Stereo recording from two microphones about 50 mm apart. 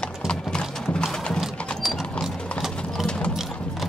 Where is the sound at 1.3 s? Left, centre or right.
Centre.